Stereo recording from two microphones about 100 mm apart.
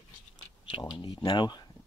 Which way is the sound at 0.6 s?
55° left (ahead or behind).